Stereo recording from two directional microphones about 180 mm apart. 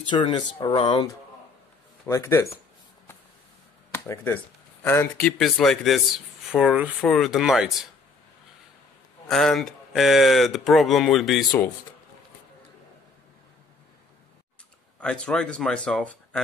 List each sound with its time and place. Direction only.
0.1 s speech: 25° left (ahead or behind)
2.0 s speech: 15° left (ahead or behind)
3.9 s speech: 10° left (ahead or behind)
9.3 s speech: centre (ahead or behind)
15.0 s speech: 5° left (ahead or behind)